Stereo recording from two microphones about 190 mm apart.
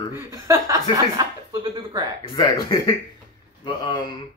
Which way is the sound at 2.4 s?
25° left (ahead or behind).